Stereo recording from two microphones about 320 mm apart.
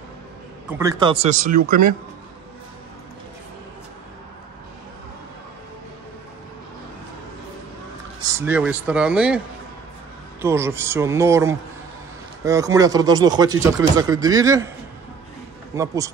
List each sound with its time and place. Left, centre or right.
0.7 s speech: centre; by 2.0 s right
8.2 s a man's voice: centre
10.4 s speech: centre
15.7 s speech: centre